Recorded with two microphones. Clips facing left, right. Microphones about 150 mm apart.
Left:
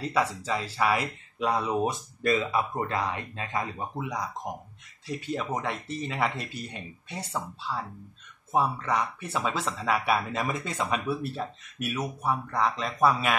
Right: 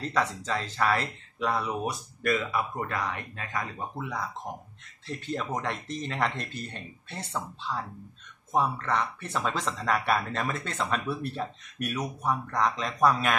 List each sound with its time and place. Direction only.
0.0 s speech: 10° left (ahead or behind)
1.4 s speech: 20° left (ahead or behind)